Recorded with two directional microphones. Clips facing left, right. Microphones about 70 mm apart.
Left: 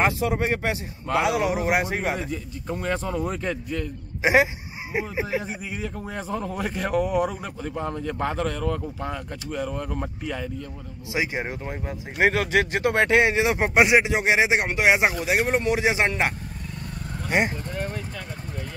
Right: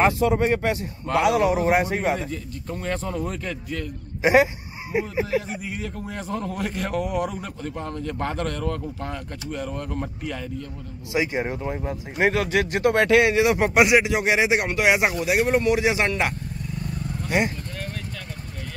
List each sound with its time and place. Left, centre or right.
0.0 s a man's voice: centre
3.3 s a man's voice: centre
15.3 s a man's voice: centre
15.7 s speech: left
17.3 s livestock: left